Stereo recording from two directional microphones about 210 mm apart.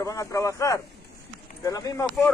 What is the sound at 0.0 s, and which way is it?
Speech, 15° left (ahead or behind).